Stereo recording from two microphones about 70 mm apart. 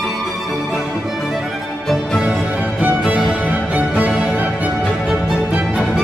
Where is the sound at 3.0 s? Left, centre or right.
Centre.